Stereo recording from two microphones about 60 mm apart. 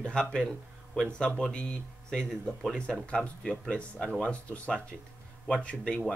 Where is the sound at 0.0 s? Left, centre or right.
Centre.